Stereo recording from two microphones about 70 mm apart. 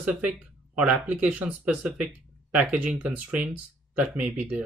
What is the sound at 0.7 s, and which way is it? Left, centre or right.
Speech, centre.